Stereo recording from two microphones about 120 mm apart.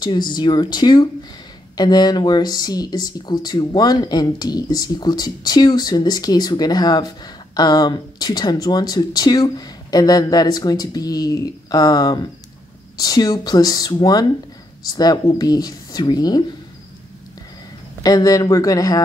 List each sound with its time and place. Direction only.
0.0 s speech: 40° left (ahead or behind)
18.0 s a man's voice: 30° left (ahead or behind)